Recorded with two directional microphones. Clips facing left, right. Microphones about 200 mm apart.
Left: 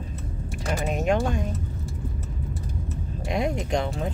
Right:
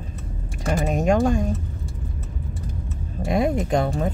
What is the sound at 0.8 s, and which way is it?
Speech, 45° right (ahead or behind).